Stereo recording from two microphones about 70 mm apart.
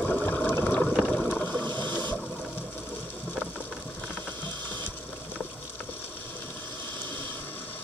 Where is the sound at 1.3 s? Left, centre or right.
Centre.